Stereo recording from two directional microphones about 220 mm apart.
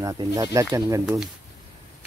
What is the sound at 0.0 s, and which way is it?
Speech, 15° right (ahead or behind).